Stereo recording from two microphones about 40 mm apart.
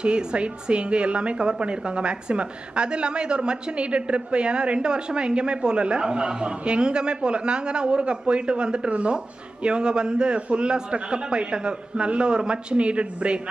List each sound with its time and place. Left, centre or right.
0.0 s a woman's voice: right